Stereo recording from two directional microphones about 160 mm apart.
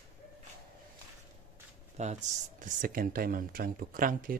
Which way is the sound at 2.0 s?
50° right (ahead or behind).